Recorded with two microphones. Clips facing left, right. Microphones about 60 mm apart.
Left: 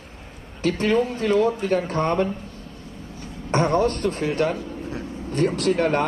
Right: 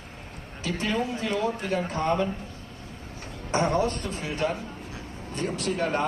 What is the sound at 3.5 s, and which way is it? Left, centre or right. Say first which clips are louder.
Speech: left 4 dB; left.